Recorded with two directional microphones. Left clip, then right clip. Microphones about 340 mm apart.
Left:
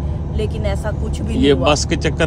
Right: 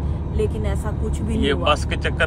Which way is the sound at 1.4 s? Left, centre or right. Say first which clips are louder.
Left 6 dB; centre.